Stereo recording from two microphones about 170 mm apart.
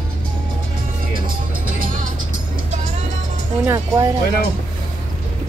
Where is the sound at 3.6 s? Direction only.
15° right (ahead or behind).